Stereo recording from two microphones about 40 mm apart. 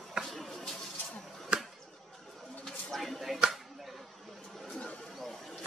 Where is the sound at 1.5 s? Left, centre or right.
Right.